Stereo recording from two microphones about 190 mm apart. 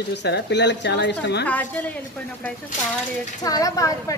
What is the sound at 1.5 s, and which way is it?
Speech, 10° left (ahead or behind).